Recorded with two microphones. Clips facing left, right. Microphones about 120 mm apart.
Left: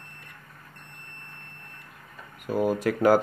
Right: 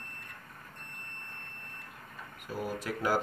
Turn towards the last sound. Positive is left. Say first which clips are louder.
# left 11 dB
turn(degrees=70)  # may be behind; listen again after turning